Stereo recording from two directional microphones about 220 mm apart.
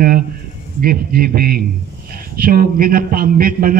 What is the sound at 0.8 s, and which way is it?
A man's voice, 40° right (ahead or behind).